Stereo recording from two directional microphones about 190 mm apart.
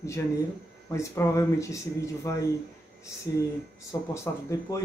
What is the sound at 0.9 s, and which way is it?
Speech, 15° left (ahead or behind).